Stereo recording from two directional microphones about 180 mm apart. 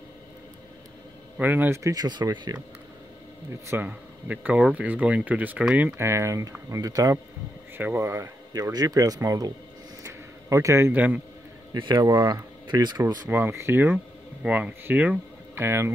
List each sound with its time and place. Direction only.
1.4 s speech: 10° right (ahead or behind)
3.6 s a man's voice: 10° right (ahead or behind)
11.7 s speech: 25° right (ahead or behind)